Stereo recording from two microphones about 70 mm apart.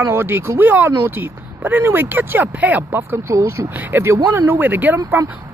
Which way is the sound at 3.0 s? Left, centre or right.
Right.